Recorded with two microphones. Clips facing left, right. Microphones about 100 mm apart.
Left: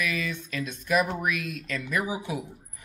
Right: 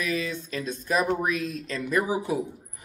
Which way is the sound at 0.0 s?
35° right (ahead or behind).